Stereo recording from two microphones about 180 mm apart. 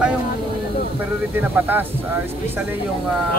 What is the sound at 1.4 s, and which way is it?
Speech, 10° right (ahead or behind).